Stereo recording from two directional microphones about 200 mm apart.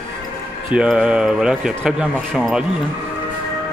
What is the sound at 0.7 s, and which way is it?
Speech, 5° right (ahead or behind).